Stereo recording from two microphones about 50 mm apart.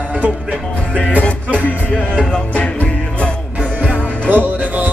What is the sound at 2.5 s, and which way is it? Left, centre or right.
Music, left.